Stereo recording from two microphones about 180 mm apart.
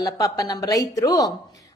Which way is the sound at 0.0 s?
20° left (ahead or behind).